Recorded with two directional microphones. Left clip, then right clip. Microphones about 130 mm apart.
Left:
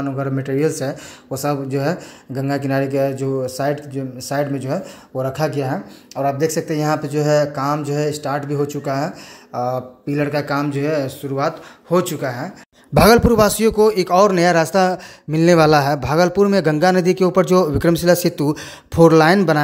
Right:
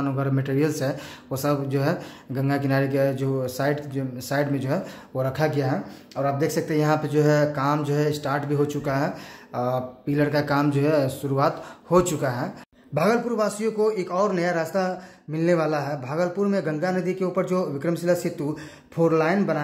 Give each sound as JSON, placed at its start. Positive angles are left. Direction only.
{"t": 0.0, "sound": "speech", "side_deg": 25}
{"t": 12.9, "sound": "a man's voice", "side_deg": 90}